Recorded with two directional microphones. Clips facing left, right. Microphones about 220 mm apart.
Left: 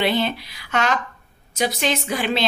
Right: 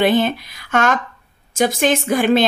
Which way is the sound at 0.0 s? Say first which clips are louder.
Right 6 dB; 50° right (ahead or behind).